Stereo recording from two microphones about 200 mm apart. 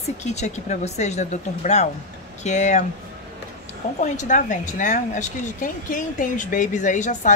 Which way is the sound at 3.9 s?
35° left (ahead or behind).